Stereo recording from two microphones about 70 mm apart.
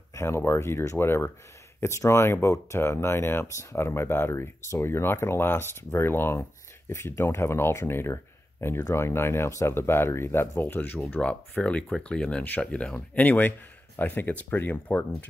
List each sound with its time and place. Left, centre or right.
0.1 s speech: left
11.2 s speech: centre